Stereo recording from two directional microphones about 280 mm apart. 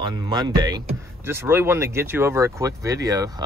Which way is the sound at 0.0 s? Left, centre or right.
Centre.